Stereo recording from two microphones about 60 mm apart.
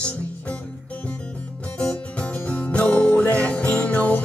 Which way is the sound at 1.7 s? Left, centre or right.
Left.